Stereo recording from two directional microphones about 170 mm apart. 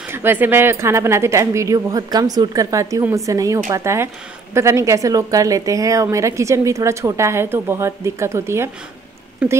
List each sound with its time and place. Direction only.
0.1 s a woman's voice: 15° right (ahead or behind)